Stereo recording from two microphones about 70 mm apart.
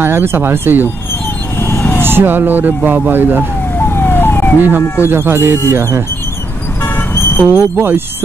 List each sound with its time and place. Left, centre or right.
0.0 s speech: right
1.6 s vehicle: left
2.0 s speech: right
3.7 s emergency vehicle: left
4.6 s speech: right
4.8 s speech: left
5.1 s speech: right
6.8 s vehicle: left
7.4 s speech: right